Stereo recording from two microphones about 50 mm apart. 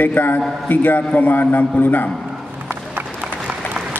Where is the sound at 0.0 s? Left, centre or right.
Left.